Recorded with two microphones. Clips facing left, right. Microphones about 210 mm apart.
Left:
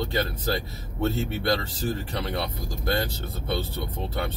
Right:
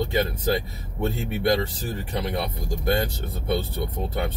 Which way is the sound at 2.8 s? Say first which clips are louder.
Right 3 dB; 15° right (ahead or behind).